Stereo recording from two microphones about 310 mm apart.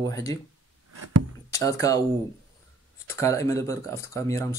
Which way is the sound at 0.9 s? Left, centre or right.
Right.